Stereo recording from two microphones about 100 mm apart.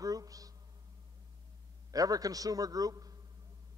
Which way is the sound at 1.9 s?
35° right (ahead or behind).